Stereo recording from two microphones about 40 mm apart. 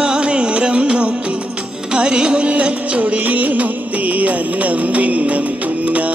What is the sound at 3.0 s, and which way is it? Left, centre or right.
Music, right.